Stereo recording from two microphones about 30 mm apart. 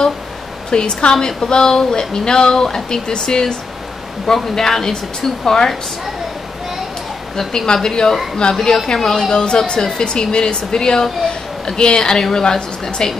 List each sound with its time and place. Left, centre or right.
0.7 s a woman's voice: left; by 5.7 s centre
7.6 s speech: left
8.4 s a woman's voice: left
9.0 s speech: centre
9.3 s speech: left